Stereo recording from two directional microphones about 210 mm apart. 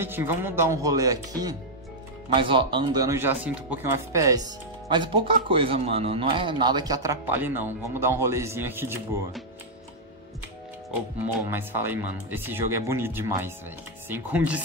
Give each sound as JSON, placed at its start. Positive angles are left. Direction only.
{"t": 0.0, "sound": "speech", "side_deg": -10}
{"t": 11.5, "sound": "speech", "side_deg": -10}